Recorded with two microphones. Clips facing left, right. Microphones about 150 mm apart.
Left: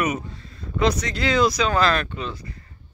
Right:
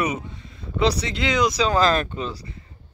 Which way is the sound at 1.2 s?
20° right (ahead or behind).